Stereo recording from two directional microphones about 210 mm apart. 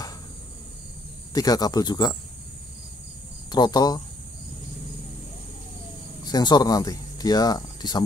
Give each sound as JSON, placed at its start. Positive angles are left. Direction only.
{"t": 1.3, "sound": "speech", "side_deg": 20}
{"t": 3.4, "sound": "speech", "side_deg": 20}
{"t": 6.2, "sound": "speech", "side_deg": 20}